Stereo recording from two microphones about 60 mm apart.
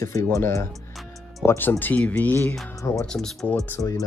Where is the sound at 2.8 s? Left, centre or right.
Left.